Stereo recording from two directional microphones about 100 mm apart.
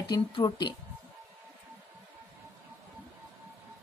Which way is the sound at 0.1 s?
50° left (ahead or behind).